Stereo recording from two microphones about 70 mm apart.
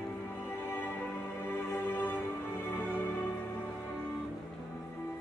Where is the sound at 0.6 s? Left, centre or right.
Left.